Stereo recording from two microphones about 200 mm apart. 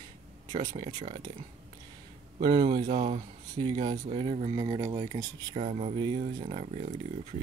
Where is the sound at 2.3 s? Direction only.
25° right (ahead or behind).